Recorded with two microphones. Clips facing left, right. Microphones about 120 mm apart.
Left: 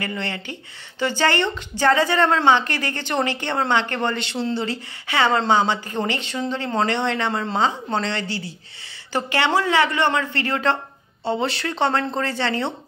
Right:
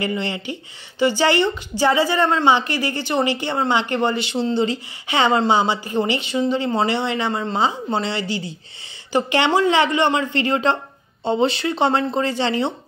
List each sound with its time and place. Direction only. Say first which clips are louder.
0.0 s a woman's voice: right 4 dB; 15° right (ahead or behind)